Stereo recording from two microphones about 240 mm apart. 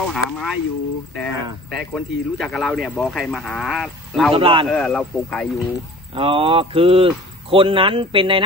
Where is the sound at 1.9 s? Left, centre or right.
Centre.